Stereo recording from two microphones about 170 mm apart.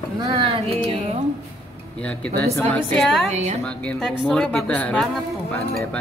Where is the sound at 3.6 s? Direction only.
5° left (ahead or behind).